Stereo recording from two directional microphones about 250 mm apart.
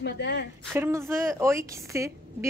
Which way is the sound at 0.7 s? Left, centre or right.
Centre.